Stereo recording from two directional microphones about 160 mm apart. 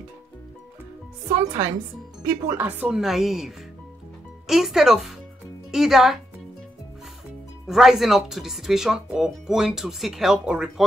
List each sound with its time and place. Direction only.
1.4 s speech: 20° right (ahead or behind); by 6.1 s centre (ahead or behind)
7.6 s speech: centre (ahead or behind)